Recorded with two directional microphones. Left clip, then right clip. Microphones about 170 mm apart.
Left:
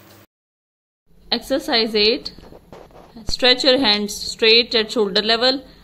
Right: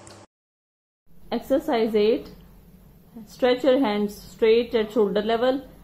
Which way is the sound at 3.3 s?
5° left (ahead or behind).